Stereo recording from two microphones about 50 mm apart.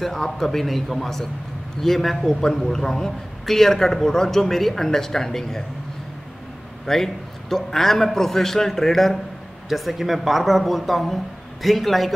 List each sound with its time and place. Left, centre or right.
0.0 s a man's voice: centre
6.9 s a man's voice: centre